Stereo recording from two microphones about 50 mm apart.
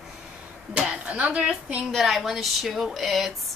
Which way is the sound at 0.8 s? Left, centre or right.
Right.